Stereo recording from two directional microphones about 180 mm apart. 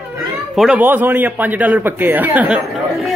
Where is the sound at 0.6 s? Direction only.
5° right (ahead or behind).